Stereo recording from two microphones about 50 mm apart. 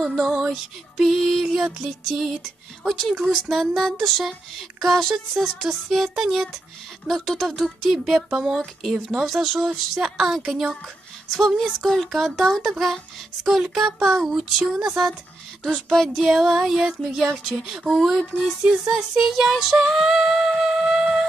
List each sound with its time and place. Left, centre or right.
0.0 s a woman's voice: centre
0.4 s a sound: centre
1.0 s a woman's voice: centre
3.7 s a woman's voice: centre
7.1 s a woman's voice: centre
14.3 s a sound: centre
15.6 s a woman's voice: centre
18.9 s music: centre